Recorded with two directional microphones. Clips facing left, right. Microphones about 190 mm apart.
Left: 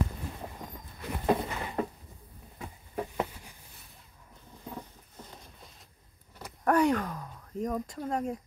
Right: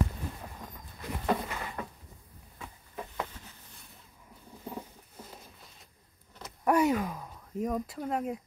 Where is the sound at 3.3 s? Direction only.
10° left (ahead or behind).